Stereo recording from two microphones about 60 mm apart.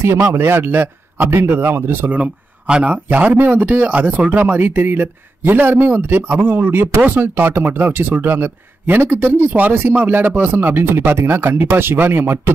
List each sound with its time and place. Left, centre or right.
0.0 s a man's voice: right
2.1 s a man's voice: right